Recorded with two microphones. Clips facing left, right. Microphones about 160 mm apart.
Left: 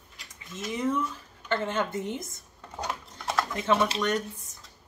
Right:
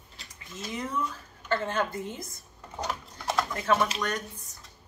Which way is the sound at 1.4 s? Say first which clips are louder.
Even; 20° left (ahead or behind).